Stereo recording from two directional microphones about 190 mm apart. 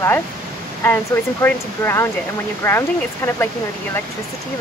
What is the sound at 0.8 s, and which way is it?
Speech, 10° left (ahead or behind).